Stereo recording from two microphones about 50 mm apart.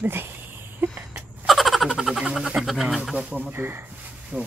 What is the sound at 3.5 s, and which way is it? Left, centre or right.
Speech, right.